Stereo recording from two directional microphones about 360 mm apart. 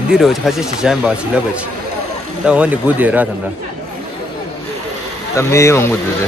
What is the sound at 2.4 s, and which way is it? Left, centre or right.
Speech, centre.